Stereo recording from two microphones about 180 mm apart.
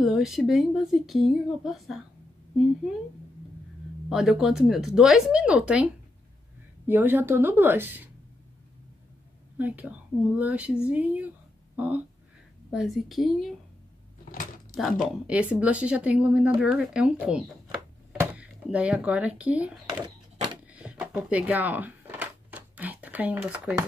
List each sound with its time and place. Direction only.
0.0 s speech: centre (ahead or behind)
4.1 s speech: 5° right (ahead or behind)
6.9 s a woman's voice: 10° right (ahead or behind)
9.6 s a woman's voice: 10° right (ahead or behind)
14.3 s a sound: 50° left (ahead or behind)
15.2 s a woman's voice: 5° right (ahead or behind)
20.6 s a sound: 5° right (ahead or behind)